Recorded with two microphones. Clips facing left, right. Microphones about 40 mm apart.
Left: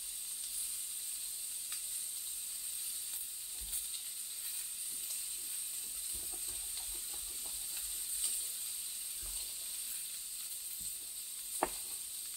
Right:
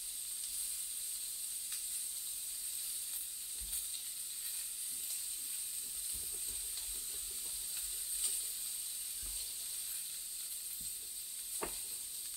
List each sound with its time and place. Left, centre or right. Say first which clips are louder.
11.6 s sizzle: left 7 dB; left